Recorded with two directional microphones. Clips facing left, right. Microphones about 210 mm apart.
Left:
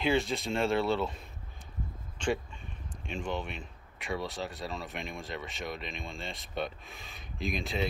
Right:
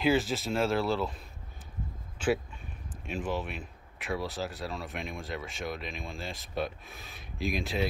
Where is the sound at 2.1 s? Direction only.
5° right (ahead or behind).